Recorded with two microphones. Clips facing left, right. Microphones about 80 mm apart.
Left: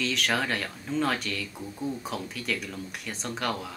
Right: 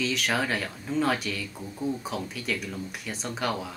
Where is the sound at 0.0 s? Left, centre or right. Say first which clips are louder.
Right 1 dB; centre.